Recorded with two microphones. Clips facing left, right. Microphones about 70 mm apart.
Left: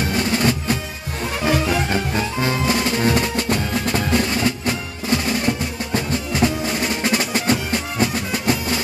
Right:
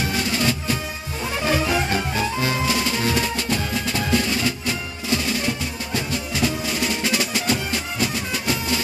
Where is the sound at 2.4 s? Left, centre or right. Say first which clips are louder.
Left 2 dB; left.